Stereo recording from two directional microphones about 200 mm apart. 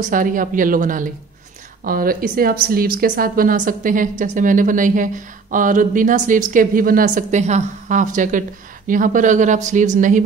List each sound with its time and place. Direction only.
0.0 s a woman's voice: 40° right (ahead or behind)